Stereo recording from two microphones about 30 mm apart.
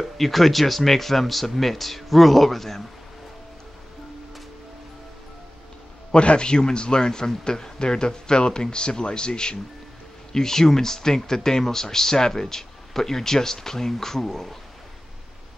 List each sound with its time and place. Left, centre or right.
0.0 s speech: centre
6.1 s a man's voice: left
10.3 s speech: centre